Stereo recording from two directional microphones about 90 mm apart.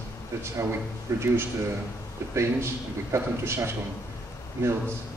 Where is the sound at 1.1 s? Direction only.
30° right (ahead or behind).